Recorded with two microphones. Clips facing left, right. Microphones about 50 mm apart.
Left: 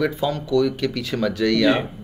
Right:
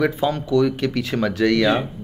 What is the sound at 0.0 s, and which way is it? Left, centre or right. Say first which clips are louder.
Speech: right 2 dB; right.